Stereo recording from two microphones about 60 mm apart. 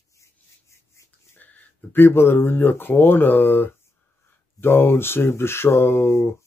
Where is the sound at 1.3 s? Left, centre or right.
Left.